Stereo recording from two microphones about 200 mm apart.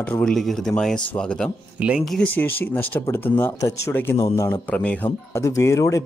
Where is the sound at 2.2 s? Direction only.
10° left (ahead or behind).